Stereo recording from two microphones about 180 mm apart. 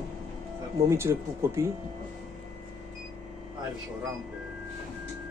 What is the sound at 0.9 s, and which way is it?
Speech, 15° right (ahead or behind).